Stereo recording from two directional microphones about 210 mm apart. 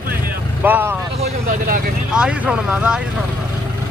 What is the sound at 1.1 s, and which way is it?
Speech, 30° right (ahead or behind).